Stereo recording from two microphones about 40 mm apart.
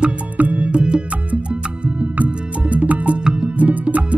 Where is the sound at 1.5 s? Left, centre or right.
Right.